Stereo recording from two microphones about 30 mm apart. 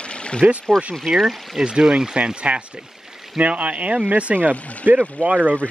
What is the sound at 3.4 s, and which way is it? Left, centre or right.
Speech, right.